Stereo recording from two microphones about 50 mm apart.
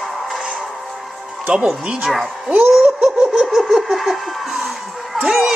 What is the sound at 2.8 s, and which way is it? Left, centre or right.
Laughter, right.